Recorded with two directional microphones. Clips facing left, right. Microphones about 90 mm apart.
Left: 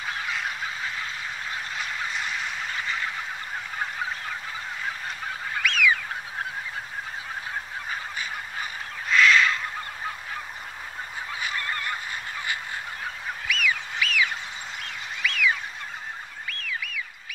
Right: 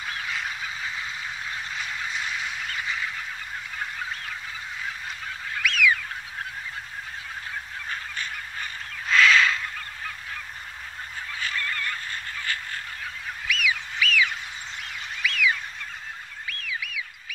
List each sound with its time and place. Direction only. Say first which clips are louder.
5.6 s goose: even; centre (ahead or behind)
9.1 s crow: even; centre (ahead or behind)
11.3 s honk: even; 15° left (ahead or behind)
13.5 s fowl: even; centre (ahead or behind)
15.2 s fowl: even; centre (ahead or behind)
16.4 s a sound: even; centre (ahead or behind)